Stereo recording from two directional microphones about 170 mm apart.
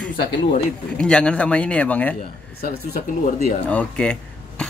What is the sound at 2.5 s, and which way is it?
Speech, 65° left (ahead or behind).